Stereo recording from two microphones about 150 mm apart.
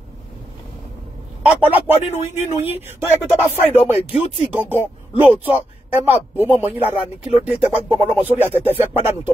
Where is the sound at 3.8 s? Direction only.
45° left (ahead or behind).